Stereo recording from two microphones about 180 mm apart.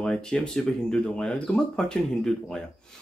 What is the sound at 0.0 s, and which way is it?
Speech, 5° left (ahead or behind).